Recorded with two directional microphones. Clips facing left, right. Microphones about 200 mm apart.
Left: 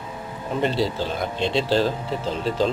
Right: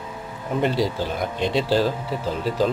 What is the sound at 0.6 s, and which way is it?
Speech, 10° right (ahead or behind).